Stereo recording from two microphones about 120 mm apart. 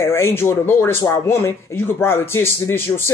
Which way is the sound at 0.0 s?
20° left (ahead or behind).